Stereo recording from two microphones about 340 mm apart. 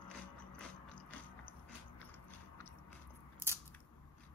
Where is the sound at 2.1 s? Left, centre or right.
Centre.